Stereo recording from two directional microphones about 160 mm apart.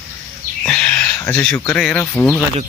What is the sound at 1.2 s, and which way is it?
Speech, 10° left (ahead or behind).